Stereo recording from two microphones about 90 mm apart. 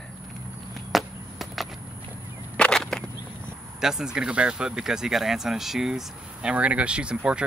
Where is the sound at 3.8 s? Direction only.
5° right (ahead or behind).